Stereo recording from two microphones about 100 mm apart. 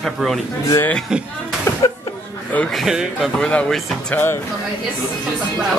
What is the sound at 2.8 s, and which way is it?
Speech, 5° right (ahead or behind).